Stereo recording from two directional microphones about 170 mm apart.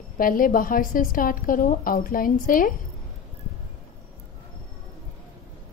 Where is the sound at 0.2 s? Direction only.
55° left (ahead or behind).